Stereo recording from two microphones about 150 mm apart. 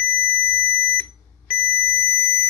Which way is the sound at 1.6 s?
10° left (ahead or behind).